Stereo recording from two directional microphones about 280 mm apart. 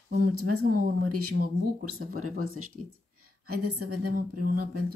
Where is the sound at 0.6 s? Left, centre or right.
Right.